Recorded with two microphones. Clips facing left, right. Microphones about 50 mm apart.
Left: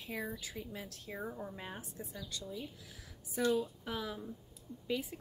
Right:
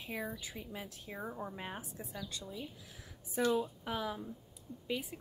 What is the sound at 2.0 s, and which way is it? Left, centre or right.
Speech, right.